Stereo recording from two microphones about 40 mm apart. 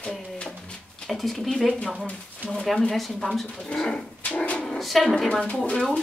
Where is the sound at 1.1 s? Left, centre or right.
Centre.